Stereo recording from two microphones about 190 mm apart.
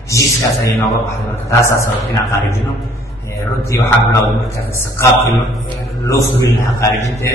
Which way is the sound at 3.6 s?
15° left (ahead or behind).